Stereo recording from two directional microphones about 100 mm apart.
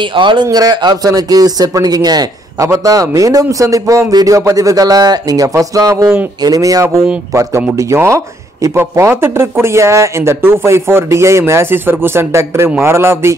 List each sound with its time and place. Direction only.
0.0 s speech: 55° right (ahead or behind); by 13.3 s 25° right (ahead or behind)